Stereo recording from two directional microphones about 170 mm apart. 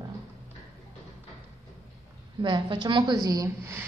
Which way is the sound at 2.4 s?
25° right (ahead or behind).